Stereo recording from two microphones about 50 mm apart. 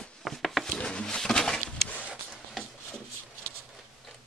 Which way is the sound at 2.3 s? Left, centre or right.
Centre.